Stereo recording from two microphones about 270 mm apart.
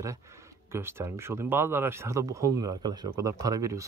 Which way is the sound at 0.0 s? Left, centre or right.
Centre.